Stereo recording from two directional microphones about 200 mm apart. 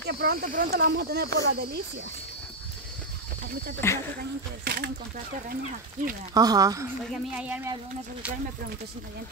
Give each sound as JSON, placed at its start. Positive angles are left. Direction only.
{"t": 0.0, "sound": "speech", "side_deg": -50}
{"t": 3.8, "sound": "speech", "side_deg": 10}
{"t": 4.6, "sound": "speech", "side_deg": -55}
{"t": 6.3, "sound": "speech", "side_deg": -20}
{"t": 7.1, "sound": "speech", "side_deg": -5}